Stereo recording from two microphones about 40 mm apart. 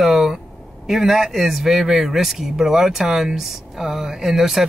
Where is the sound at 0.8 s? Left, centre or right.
Centre.